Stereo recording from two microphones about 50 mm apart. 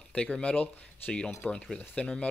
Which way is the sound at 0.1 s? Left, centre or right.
Left.